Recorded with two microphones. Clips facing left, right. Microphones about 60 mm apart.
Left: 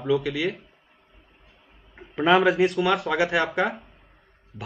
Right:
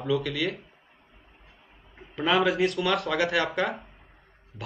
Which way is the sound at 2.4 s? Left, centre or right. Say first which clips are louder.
Left 4 dB; centre.